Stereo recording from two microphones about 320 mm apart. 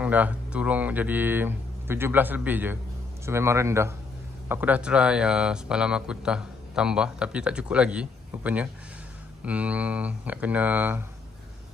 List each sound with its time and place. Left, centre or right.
0.0 s speech: centre